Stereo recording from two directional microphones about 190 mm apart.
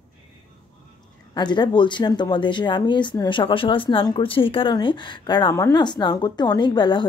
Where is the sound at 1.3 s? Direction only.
25° left (ahead or behind).